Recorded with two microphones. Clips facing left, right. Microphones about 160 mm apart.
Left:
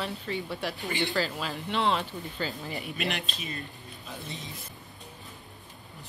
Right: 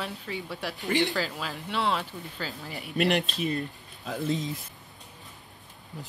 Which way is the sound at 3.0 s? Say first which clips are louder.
Right 12 dB; 65° right (ahead or behind).